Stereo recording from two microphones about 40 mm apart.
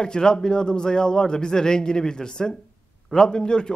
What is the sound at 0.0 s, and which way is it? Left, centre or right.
A man's voice, centre.